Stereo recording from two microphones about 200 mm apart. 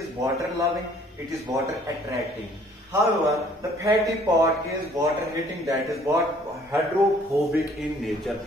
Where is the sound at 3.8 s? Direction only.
15° right (ahead or behind).